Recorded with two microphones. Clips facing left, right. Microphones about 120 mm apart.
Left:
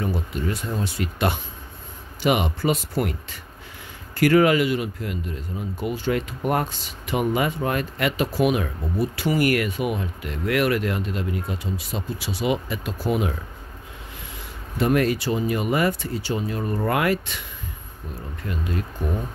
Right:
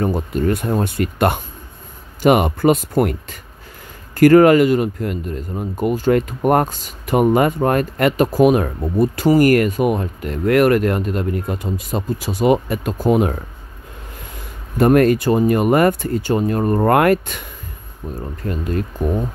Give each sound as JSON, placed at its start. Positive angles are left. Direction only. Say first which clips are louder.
{"t": 0.0, "sound": "speech", "louder": "right 8 dB", "side_deg": -45}
{"t": 14.8, "sound": "speech", "louder": "right 8 dB", "side_deg": -50}